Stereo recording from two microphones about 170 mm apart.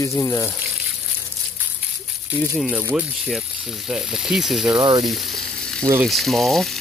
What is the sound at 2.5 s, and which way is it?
Speech, centre (ahead or behind).